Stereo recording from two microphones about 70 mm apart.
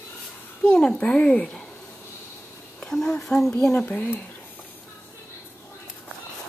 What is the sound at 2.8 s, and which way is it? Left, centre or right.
Speech, centre.